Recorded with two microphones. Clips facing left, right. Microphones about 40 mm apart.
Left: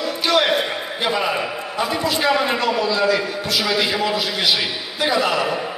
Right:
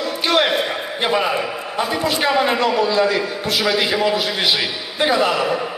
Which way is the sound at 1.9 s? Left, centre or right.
Right.